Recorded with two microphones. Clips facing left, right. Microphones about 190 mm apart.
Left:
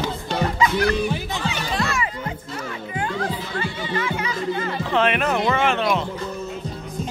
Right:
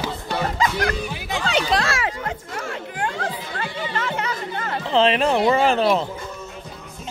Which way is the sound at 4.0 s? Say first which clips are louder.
Left 1 dB; 60° right (ahead or behind).